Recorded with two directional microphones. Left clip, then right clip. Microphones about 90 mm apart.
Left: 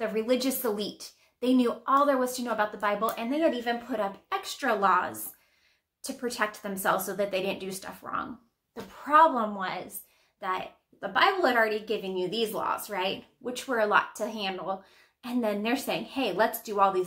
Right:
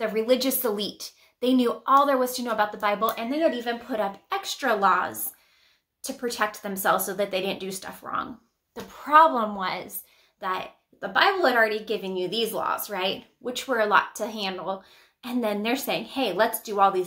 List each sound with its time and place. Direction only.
0.0 s a woman's voice: 30° right (ahead or behind)